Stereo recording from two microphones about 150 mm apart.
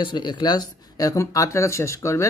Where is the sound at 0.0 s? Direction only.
30° left (ahead or behind).